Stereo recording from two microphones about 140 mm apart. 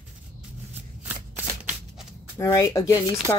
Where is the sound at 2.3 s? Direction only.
20° left (ahead or behind).